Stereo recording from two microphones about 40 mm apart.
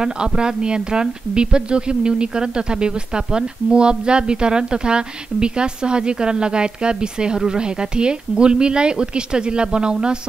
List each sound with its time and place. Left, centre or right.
0.0 s speech: centre